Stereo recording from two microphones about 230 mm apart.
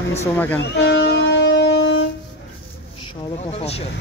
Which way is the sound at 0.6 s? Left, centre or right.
Left.